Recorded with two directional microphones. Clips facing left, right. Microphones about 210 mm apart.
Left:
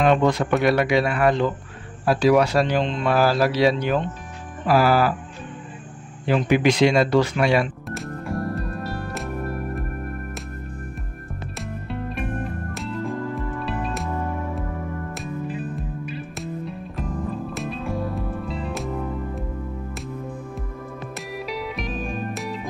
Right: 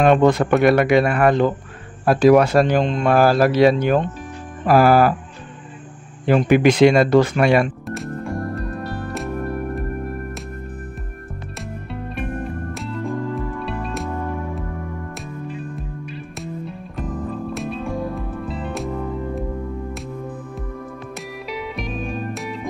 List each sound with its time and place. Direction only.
0.0 s speech: 50° right (ahead or behind)
6.2 s speech: 50° right (ahead or behind)
7.9 s music: centre (ahead or behind)
12.7 s music: centre (ahead or behind)
16.1 s music: centre (ahead or behind)
21.5 s music: centre (ahead or behind)